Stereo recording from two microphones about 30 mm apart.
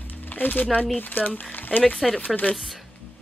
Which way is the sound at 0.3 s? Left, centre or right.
Left.